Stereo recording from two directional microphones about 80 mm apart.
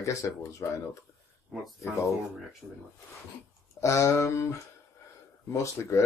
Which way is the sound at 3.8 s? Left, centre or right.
Left.